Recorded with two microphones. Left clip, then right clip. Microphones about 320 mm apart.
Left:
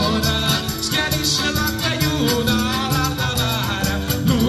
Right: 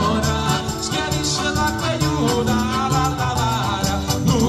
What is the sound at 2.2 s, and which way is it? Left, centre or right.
Music, centre.